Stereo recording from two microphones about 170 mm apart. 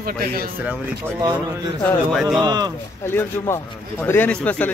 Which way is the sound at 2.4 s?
25° right (ahead or behind).